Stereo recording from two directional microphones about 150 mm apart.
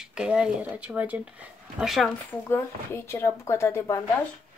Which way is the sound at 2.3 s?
15° left (ahead or behind).